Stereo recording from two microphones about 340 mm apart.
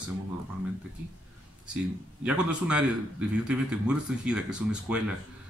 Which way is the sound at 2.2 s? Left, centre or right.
Centre.